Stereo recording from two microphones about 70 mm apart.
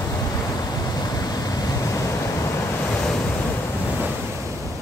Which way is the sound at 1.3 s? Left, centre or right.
Left.